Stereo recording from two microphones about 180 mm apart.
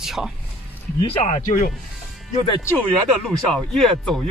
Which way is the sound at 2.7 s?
5° left (ahead or behind).